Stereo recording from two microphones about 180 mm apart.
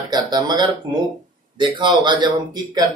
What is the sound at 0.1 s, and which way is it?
Speech, 20° right (ahead or behind).